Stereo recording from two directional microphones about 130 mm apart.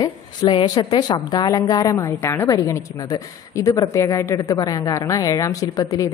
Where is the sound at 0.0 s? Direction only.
35° left (ahead or behind).